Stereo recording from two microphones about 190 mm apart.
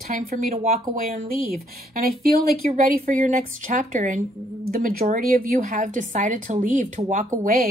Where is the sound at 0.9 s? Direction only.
45° right (ahead or behind).